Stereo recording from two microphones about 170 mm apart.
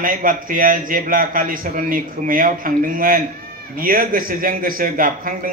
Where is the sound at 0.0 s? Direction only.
55° right (ahead or behind).